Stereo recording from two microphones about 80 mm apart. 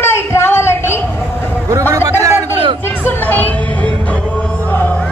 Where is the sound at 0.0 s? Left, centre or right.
Left.